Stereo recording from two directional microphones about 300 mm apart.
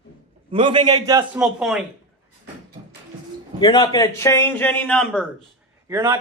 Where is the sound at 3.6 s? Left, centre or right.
Centre.